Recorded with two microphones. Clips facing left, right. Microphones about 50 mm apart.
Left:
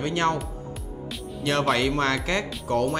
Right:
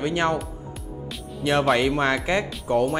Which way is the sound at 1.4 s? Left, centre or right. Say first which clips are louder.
Right 3 dB; centre.